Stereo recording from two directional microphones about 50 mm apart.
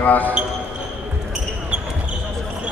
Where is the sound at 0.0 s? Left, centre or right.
Left.